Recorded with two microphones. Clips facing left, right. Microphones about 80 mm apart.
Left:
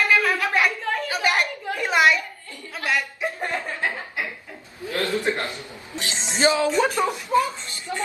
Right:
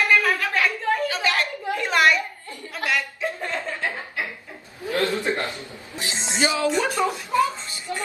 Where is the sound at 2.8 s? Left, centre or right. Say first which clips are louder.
Even; left.